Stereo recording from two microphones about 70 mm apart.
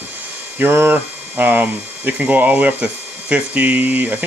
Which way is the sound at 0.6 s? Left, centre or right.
Right.